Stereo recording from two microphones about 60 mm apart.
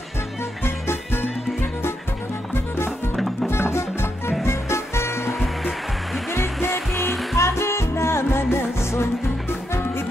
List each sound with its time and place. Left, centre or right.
0.7 s music: left
3.4 s music: left
5.2 s music: centre
6.3 s music: left
6.9 s music: centre
7.3 s music: left